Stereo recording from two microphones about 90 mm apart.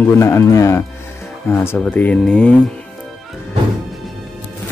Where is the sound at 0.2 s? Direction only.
35° left (ahead or behind); by 2.6 s 10° left (ahead or behind).